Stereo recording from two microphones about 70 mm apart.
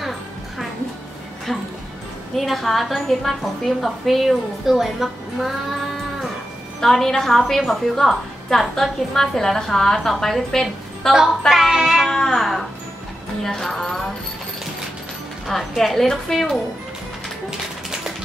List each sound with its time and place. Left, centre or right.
1.5 s a woman's voice: centre
6.8 s a woman's voice: centre
12.1 s cat: centre
13.4 s music: centre
15.4 s a woman's voice: centre
17.5 s a sound: centre